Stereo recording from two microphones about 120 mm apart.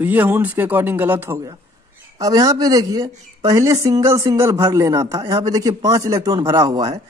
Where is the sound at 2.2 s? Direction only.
30° right (ahead or behind).